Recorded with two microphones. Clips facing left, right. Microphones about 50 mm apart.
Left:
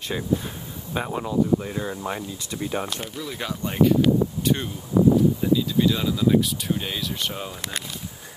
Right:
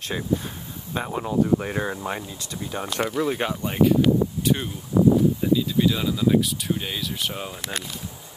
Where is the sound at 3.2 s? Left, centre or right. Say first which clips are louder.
Right 8 dB; right.